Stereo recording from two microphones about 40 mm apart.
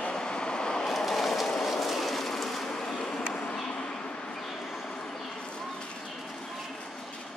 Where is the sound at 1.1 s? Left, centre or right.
Centre.